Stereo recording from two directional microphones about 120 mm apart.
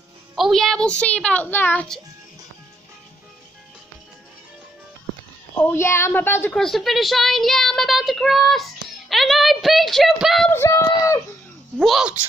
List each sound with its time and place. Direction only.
0.4 s a woman's voice: centre (ahead or behind)
5.6 s a woman's voice: 20° left (ahead or behind)
6.5 s speech: centre (ahead or behind)
10.5 s a woman's voice: 20° left (ahead or behind)
11.8 s speech: centre (ahead or behind)